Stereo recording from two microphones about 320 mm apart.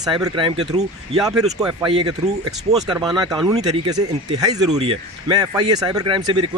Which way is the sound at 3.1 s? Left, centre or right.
Centre.